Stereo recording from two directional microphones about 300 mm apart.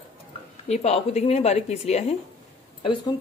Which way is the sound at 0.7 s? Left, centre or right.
Left.